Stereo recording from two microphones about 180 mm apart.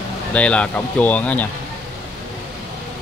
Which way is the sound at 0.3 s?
5° left (ahead or behind).